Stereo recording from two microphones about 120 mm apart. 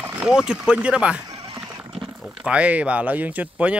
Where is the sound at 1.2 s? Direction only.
40° right (ahead or behind).